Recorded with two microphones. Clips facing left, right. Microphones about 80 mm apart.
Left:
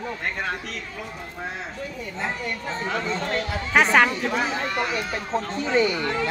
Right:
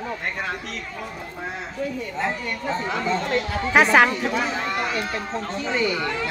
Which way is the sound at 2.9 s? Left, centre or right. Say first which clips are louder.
Right 2 dB; centre.